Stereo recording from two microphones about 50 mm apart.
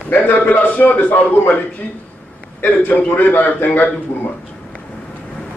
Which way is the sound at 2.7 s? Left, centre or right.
Left.